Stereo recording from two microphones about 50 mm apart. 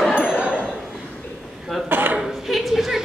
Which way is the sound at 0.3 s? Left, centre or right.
Centre.